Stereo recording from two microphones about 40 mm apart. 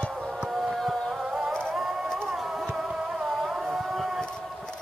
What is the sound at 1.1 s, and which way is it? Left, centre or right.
Music, centre.